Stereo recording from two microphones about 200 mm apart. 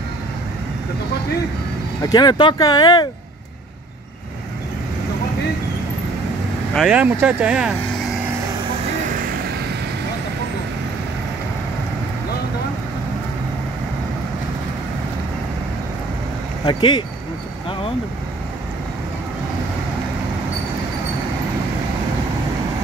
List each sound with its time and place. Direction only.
2.0 s speech: 20° left (ahead or behind)
6.7 s speech: 5° right (ahead or behind)
16.6 s speech: 20° left (ahead or behind)
17.6 s vehicle: 25° left (ahead or behind)